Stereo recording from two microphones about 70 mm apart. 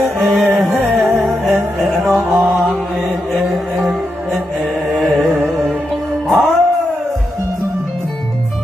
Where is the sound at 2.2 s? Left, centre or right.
Right.